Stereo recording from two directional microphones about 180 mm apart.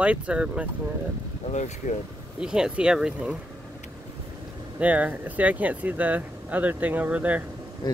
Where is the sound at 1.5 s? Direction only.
40° left (ahead or behind).